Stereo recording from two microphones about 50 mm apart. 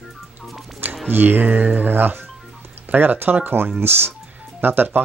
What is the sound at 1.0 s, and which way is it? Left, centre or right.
Speech, right.